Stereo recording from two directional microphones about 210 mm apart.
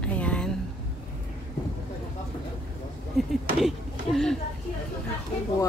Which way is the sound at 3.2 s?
Centre (ahead or behind).